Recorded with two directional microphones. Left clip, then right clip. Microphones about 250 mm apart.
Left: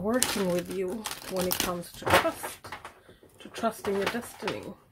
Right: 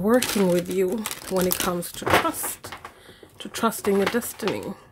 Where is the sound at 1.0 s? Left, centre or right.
Centre.